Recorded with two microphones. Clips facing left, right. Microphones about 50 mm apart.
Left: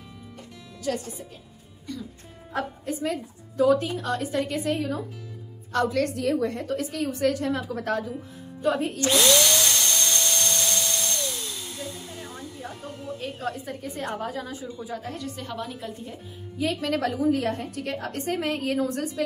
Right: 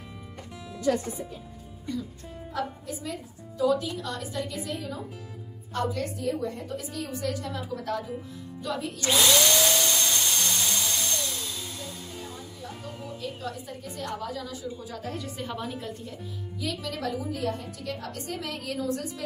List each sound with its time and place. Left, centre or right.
1.9 s speech: centre
2.5 s a woman's voice: left
5.7 s a woman's voice: left
8.6 s a woman's voice: left
9.1 s tools: centre
13.2 s a woman's voice: left
14.8 s a woman's voice: centre
15.0 s a woman's voice: centre
16.5 s a woman's voice: left